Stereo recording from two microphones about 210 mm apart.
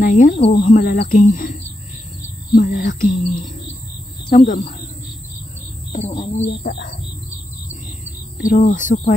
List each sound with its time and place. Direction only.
0.0 s whispering: 40° left (ahead or behind)
5.9 s whispering: 30° left (ahead or behind)
6.6 s speech: 45° left (ahead or behind)
8.4 s whispering: 40° left (ahead or behind)